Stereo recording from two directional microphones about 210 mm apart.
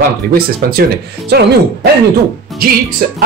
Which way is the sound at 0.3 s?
45° right (ahead or behind).